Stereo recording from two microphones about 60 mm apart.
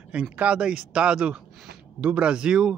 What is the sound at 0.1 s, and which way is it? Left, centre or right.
A man's voice, centre.